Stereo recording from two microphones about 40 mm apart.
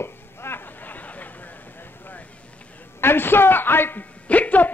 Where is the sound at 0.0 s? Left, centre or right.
Left.